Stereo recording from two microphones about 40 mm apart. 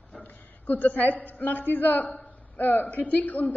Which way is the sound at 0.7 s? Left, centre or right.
Left.